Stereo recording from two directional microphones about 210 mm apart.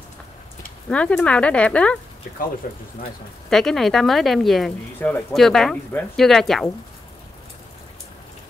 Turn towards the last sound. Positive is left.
turn(degrees=0)  # may be behind; listen again after turning